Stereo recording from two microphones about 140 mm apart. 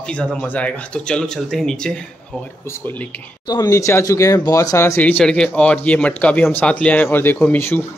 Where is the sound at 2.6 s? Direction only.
15° left (ahead or behind).